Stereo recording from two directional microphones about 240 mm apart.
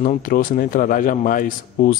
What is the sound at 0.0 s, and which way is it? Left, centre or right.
Speech, left.